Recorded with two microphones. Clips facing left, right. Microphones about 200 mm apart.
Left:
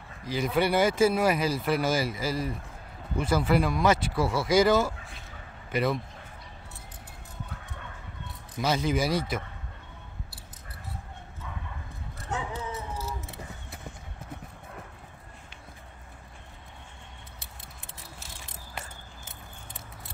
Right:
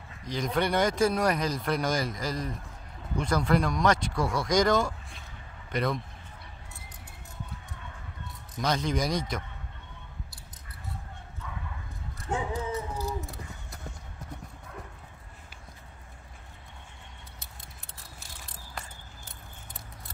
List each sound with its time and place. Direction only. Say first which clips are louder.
0.2 s speech: left 2 dB; 5° left (ahead or behind)
8.5 s speech: left 2 dB; 5° left (ahead or behind)
12.3 s a sound: right 3 dB; 20° right (ahead or behind)
12.9 s vehicle: right 3 dB; centre (ahead or behind)